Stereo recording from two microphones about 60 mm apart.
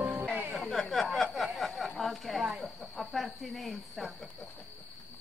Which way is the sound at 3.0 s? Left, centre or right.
Centre.